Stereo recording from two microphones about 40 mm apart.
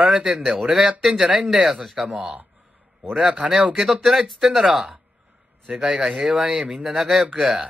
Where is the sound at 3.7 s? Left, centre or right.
Centre.